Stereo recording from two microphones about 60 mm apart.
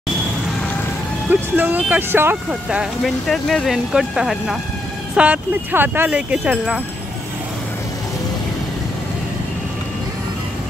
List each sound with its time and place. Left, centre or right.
1.3 s speech: right
3.0 s speech: centre
5.1 s speech: right
5.7 s speech: right
6.3 s speech: centre